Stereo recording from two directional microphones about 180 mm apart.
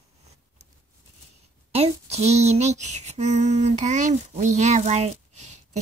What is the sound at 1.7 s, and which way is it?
Female singing, 35° right (ahead or behind).